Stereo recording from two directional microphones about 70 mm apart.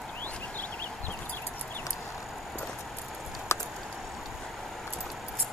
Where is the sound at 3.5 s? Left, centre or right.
Left.